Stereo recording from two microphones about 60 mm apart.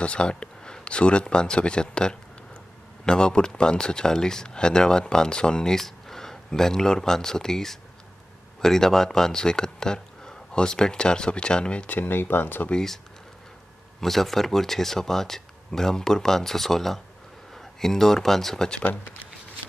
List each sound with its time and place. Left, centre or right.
0.0 s speech: centre
12.0 s speech: left
14.0 s speech: centre
18.8 s speech: left